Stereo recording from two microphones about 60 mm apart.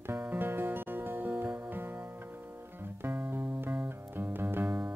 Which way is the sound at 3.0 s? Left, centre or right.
Right.